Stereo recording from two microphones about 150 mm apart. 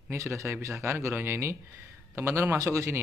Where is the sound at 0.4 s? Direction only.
20° right (ahead or behind).